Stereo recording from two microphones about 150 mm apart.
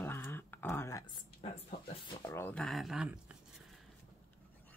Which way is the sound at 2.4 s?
5° left (ahead or behind).